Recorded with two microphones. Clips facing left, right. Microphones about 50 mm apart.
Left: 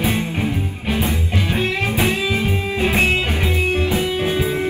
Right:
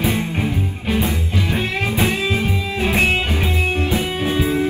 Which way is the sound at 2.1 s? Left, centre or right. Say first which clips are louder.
Even; right.